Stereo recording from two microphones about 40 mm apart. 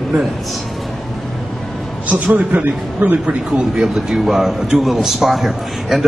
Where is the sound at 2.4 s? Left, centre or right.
Right.